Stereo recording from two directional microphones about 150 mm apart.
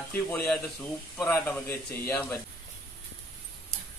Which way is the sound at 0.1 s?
10° left (ahead or behind).